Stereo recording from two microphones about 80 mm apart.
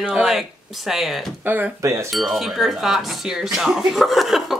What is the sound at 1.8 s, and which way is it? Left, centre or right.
Speech, right.